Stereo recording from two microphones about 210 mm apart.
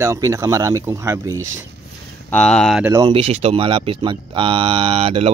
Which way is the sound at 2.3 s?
5° left (ahead or behind).